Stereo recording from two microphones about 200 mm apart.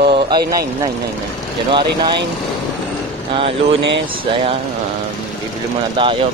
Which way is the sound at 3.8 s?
60° right (ahead or behind).